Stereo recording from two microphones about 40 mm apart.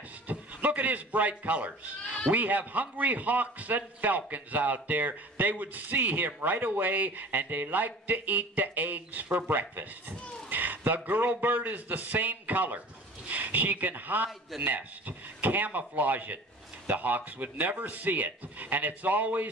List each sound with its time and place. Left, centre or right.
0.3 s a man's voice: right